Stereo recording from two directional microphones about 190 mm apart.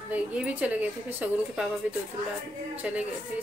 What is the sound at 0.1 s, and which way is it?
A woman's voice, 5° right (ahead or behind).